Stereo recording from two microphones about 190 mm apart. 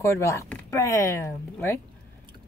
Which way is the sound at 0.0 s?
15° left (ahead or behind).